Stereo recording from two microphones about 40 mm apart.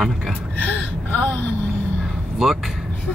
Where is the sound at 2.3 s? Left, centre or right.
Centre.